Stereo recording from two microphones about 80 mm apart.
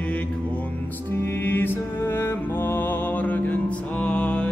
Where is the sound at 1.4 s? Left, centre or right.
Left.